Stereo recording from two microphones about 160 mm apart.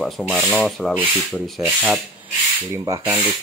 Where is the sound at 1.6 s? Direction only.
5° right (ahead or behind).